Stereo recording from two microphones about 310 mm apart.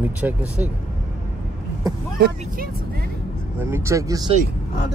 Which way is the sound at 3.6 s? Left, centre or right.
Centre.